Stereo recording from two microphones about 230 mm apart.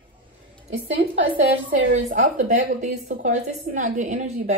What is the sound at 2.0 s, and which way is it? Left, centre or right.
A woman's voice, right.